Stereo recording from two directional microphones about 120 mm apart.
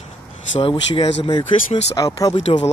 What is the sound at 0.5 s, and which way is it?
Speech, 45° left (ahead or behind).